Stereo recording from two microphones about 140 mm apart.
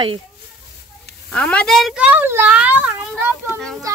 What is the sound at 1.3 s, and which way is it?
A child's voice, 10° left (ahead or behind).